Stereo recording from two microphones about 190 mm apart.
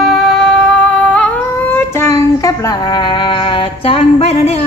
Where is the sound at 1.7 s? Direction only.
15° left (ahead or behind); by 4.6 s 35° left (ahead or behind).